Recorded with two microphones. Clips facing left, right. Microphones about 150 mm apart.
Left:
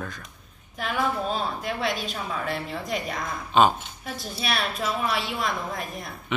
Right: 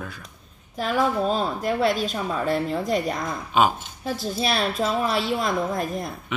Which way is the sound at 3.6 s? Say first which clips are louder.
Left 1 dB; 10° right (ahead or behind).